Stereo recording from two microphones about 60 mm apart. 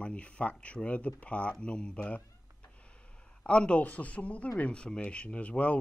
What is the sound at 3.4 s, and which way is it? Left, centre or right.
Speech, centre.